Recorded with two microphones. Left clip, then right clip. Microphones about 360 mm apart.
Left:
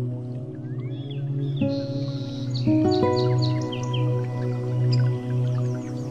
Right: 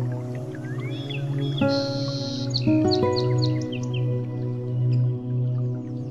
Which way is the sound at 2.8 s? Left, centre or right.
Centre.